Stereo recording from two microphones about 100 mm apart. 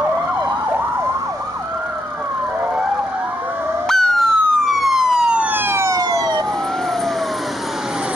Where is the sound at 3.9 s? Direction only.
5° left (ahead or behind); by 6.5 s 40° right (ahead or behind).